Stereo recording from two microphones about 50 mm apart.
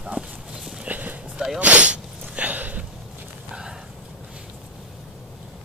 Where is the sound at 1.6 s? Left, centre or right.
Right.